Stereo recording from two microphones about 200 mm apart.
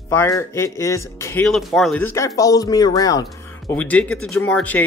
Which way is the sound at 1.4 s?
Centre (ahead or behind).